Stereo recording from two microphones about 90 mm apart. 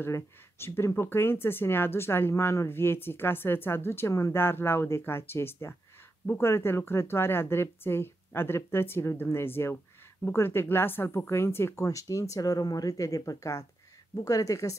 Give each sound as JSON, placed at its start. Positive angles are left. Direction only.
{"t": 0.0, "sound": "a woman's voice", "side_deg": 25}